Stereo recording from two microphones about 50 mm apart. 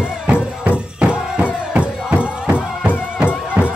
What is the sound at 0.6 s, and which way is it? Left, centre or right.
Music, right.